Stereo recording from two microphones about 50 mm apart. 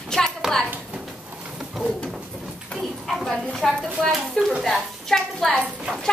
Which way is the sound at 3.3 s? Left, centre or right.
Centre.